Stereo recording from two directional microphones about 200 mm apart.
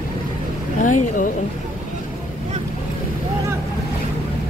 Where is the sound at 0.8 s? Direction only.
40° left (ahead or behind).